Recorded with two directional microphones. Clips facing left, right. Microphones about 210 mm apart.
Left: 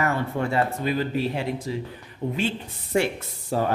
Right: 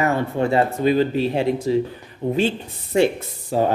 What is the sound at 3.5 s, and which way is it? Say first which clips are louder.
Speech: right 5 dB; 15° right (ahead or behind).